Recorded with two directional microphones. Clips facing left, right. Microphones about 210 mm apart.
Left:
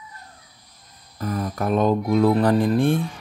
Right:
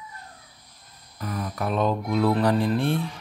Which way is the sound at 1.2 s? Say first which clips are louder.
Left 4 dB; 45° left (ahead or behind).